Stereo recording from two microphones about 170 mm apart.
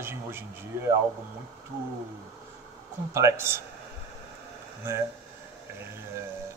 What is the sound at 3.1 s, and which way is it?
Speech, 15° right (ahead or behind).